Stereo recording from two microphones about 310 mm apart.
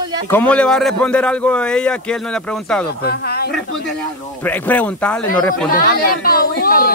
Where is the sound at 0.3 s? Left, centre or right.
Centre.